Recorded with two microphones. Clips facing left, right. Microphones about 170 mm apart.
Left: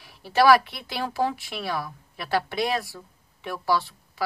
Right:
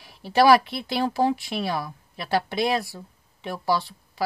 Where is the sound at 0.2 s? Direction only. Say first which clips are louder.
Right 1 dB; 20° right (ahead or behind).